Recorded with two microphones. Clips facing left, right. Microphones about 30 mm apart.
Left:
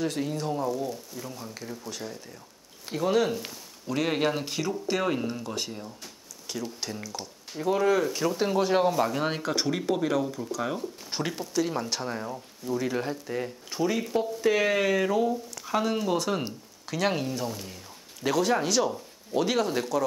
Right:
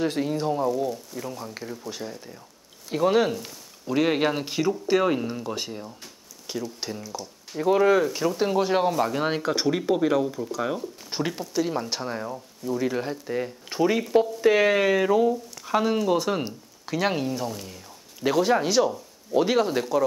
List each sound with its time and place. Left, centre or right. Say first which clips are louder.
0.0 s speech: right 4 dB; centre
8.0 s speech: right 2 dB; centre
18.2 s speech: right 3 dB; centre